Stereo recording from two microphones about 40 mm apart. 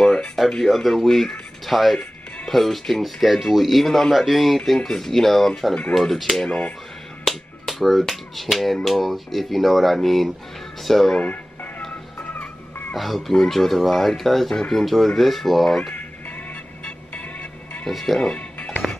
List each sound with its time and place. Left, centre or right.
0.0 s a sound: centre
0.7 s speech: centre
4.7 s speech: centre
7.2 s finger snapping: centre
8.8 s speech: centre
11.1 s music: left
12.9 s speech: centre
15.9 s music: left
17.8 s speech: centre